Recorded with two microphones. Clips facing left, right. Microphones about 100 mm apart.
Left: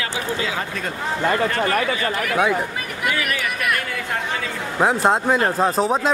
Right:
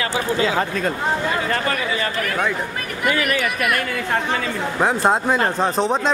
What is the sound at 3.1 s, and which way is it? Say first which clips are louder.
Speech: right 4 dB; 45° right (ahead or behind).